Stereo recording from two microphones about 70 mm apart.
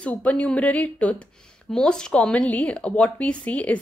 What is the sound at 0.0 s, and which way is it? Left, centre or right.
A woman's voice, centre.